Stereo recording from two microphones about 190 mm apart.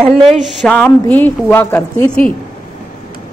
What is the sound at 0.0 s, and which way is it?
A woman's voice, centre (ahead or behind).